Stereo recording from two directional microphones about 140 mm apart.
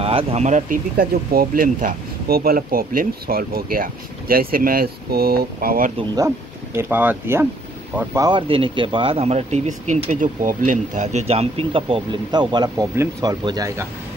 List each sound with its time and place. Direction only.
0.0 s speech: 40° right (ahead or behind); by 5.9 s 85° right
6.1 s speech: 20° right (ahead or behind)
8.2 s speech: 35° right (ahead or behind)